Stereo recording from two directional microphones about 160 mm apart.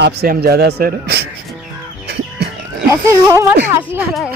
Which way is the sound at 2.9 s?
15° right (ahead or behind).